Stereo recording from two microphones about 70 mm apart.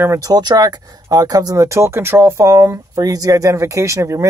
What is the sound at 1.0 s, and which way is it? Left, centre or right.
Speech, right.